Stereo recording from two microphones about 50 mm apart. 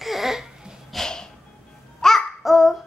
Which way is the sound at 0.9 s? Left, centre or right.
Centre.